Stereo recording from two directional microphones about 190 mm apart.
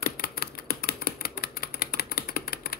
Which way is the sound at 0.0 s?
50° left (ahead or behind).